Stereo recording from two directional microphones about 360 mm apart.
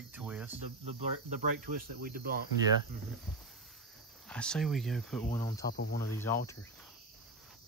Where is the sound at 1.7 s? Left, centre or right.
Right.